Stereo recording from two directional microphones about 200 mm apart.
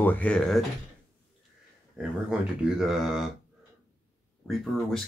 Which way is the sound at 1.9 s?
5° right (ahead or behind).